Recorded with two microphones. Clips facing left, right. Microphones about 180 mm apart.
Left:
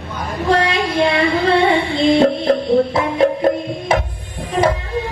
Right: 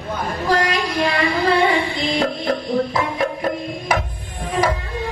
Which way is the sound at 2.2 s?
25° left (ahead or behind).